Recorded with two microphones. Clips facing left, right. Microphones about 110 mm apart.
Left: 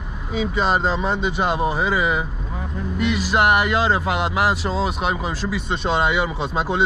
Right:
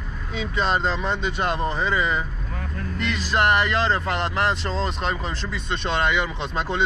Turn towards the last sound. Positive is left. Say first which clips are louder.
# left 4 dB
turn(degrees=5)  # may be behind; listen again after turning